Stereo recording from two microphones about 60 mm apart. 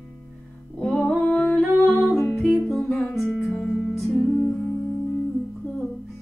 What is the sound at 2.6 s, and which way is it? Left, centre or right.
Music, centre.